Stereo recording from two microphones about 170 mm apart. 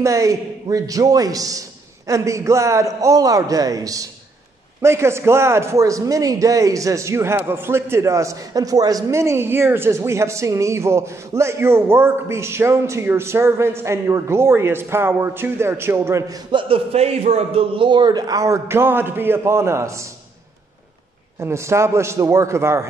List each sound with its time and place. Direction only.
0.0 s a man's voice: 20° right (ahead or behind)
16.6 s a man's voice: 35° right (ahead or behind); by 20.1 s 15° right (ahead or behind)
21.4 s a man's voice: 15° right (ahead or behind)